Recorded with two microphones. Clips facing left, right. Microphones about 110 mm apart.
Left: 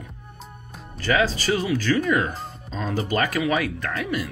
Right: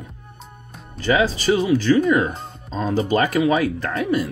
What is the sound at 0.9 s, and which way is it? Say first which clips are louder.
Speech: right 3 dB; 20° right (ahead or behind).